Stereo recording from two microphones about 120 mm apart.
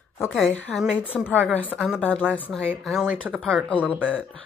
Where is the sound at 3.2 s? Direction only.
15° right (ahead or behind).